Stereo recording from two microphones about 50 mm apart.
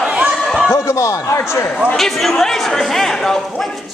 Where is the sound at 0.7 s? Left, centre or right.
Left.